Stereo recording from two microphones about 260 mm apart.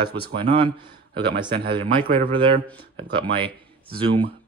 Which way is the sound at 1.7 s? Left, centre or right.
Centre.